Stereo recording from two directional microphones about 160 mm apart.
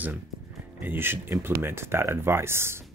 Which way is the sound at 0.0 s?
10° right (ahead or behind).